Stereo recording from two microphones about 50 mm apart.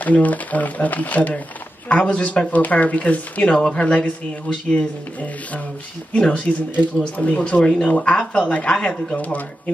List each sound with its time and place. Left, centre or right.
0.0 s speech: left
6.1 s speech: left